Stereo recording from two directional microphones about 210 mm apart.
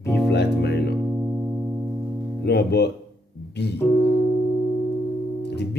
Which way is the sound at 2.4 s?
50° left (ahead or behind).